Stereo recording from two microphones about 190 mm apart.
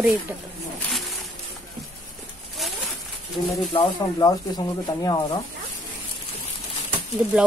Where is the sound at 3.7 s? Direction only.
20° left (ahead or behind).